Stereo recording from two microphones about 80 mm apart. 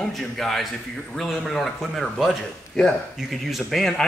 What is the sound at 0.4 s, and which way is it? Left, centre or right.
Speech, centre.